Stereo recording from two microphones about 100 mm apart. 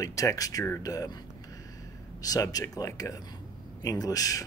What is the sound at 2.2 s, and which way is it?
Speech, 40° left (ahead or behind).